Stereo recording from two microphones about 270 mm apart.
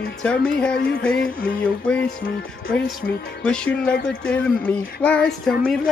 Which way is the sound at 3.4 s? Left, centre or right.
Centre.